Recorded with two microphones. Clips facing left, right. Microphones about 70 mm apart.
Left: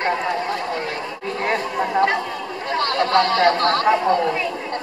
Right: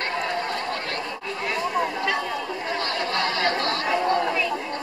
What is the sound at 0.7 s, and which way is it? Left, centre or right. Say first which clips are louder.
Chatter: left 4 dB; centre.